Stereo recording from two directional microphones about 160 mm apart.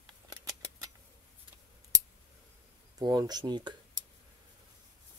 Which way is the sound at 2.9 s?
25° right (ahead or behind).